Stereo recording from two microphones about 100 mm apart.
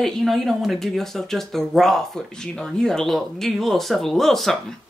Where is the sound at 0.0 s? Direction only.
Centre (ahead or behind).